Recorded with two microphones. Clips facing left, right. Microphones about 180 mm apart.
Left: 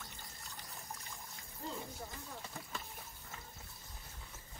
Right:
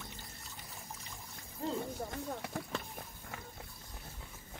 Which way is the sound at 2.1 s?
65° right (ahead or behind).